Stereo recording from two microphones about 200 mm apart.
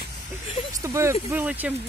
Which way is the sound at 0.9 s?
10° right (ahead or behind).